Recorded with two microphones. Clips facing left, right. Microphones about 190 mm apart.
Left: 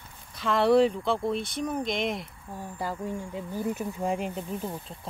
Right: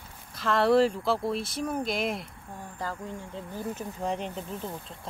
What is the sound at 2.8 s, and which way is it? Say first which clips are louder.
Speech: left 4 dB; 10° left (ahead or behind).